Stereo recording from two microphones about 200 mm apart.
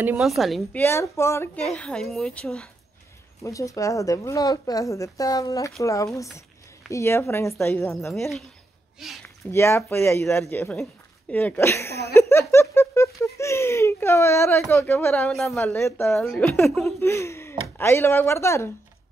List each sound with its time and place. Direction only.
0.0 s a woman's voice: 5° right (ahead or behind)
0.7 s a woman's voice: 15° left (ahead or behind)
3.4 s a woman's voice: 15° left (ahead or behind)
8.1 s a woman's voice: centre (ahead or behind)
9.5 s a woman's voice: 10° left (ahead or behind)
12.2 s giggle: 15° left (ahead or behind)
14.7 s a woman's voice: 15° left (ahead or behind)
17.0 s a woman's voice: 15° left (ahead or behind)